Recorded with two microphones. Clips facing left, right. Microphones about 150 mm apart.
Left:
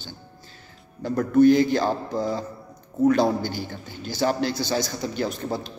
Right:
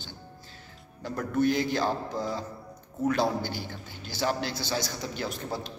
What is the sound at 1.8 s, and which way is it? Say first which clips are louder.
Music: left 5 dB; 40° left (ahead or behind).